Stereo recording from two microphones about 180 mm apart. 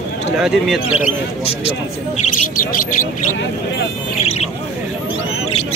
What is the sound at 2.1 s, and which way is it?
Speech, 45° left (ahead or behind).